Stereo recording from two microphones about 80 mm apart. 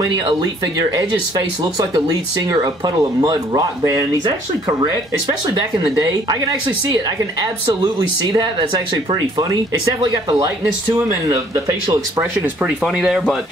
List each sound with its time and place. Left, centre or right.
1.6 s speech: right
6.2 s speech: right
11.3 s speech: right
12.6 s speech: centre